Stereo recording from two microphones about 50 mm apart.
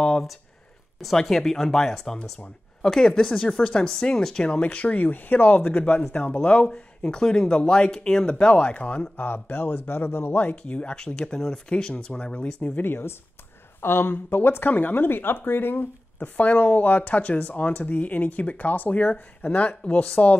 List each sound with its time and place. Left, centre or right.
1.1 s speech: centre
4.5 s speech: left
10.5 s speech: left
12.7 s speech: left
16.3 s speech: left